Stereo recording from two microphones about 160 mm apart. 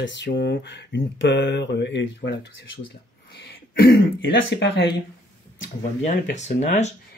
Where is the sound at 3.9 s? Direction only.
90° left.